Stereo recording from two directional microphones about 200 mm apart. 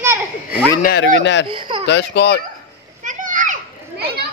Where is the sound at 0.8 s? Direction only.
60° left (ahead or behind).